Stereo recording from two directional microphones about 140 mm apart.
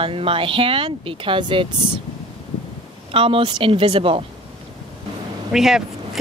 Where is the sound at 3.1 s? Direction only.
40° right (ahead or behind).